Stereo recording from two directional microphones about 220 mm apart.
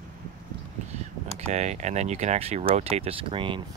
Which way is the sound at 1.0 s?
30° right (ahead or behind).